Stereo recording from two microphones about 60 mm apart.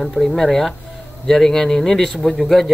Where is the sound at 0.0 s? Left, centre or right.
Centre.